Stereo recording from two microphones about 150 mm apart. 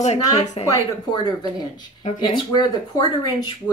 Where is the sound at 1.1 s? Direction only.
25° left (ahead or behind).